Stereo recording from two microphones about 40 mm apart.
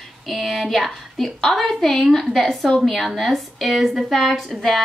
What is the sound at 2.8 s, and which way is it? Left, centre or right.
Speech, centre.